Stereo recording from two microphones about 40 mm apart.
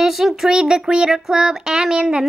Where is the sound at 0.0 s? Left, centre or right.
Centre.